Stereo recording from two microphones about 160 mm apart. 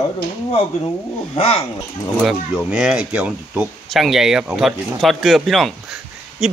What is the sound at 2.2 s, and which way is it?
Speech, 5° right (ahead or behind).